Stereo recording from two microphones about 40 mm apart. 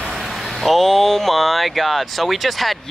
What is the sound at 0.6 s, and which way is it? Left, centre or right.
Speech, centre.